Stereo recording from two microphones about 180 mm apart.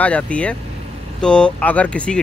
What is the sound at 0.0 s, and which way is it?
Speech, 5° left (ahead or behind).